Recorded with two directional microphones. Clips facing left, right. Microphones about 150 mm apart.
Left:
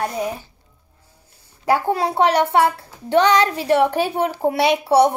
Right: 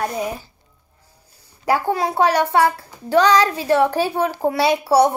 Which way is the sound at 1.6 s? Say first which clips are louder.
Left 1 dB; 25° left (ahead or behind).